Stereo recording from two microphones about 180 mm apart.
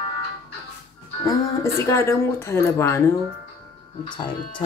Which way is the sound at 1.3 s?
15° left (ahead or behind).